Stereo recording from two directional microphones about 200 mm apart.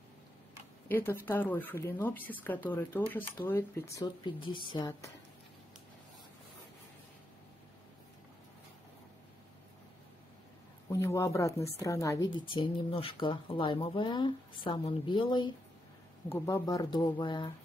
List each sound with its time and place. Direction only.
0.8 s speech: 10° left (ahead or behind)
10.9 s a woman's voice: 15° left (ahead or behind)
16.3 s speech: 10° left (ahead or behind)